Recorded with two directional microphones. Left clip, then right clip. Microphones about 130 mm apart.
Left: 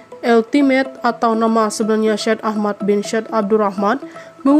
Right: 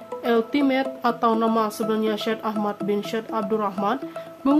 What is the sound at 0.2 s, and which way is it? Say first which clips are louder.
Speech: left 8 dB; 40° left (ahead or behind).